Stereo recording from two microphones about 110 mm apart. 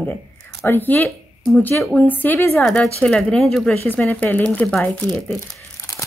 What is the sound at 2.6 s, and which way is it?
Speech, 10° left (ahead or behind).